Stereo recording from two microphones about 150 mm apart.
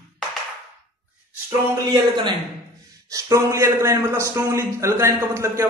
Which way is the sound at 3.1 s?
20° right (ahead or behind).